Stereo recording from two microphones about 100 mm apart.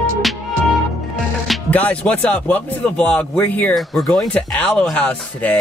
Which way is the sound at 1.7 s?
15° left (ahead or behind).